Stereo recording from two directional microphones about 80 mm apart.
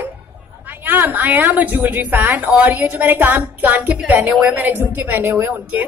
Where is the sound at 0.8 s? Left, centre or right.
Right.